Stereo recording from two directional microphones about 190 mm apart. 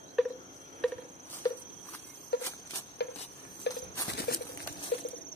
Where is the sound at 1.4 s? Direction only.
20° left (ahead or behind).